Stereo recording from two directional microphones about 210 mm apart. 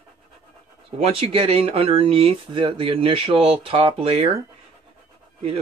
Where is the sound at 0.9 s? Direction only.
25° right (ahead or behind).